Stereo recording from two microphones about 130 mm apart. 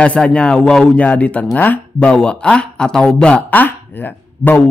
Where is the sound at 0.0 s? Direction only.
10° left (ahead or behind).